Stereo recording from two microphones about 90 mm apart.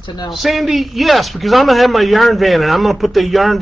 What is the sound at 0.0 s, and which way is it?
Speech, 50° left (ahead or behind).